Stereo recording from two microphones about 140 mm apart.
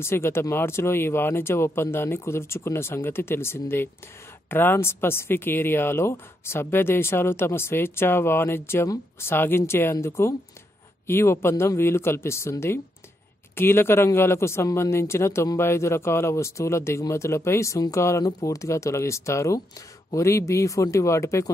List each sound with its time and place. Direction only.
0.0 s speech: 15° left (ahead or behind)